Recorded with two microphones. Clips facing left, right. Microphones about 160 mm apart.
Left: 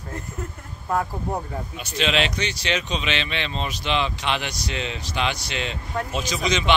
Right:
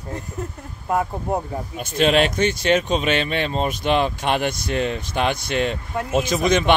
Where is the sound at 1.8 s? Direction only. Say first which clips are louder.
Right 6 dB; 50° right (ahead or behind).